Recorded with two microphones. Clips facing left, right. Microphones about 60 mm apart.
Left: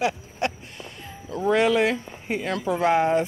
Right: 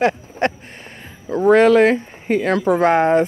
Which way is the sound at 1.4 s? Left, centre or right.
Right.